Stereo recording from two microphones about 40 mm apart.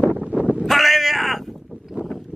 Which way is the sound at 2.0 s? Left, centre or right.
Right.